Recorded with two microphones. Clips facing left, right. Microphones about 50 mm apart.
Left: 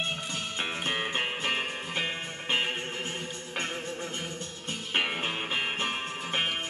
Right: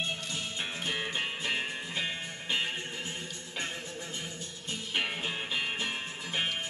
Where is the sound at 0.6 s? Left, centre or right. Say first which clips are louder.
Left 5 dB; left.